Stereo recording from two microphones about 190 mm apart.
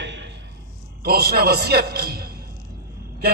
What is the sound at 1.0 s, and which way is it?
A man's voice, 55° right (ahead or behind).